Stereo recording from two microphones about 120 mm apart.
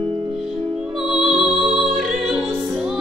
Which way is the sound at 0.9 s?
5° right (ahead or behind).